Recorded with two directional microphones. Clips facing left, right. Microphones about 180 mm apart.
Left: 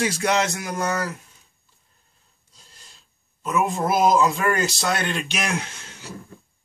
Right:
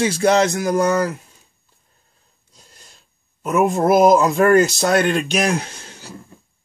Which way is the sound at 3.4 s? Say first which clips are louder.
Right 6 dB; 50° right (ahead or behind).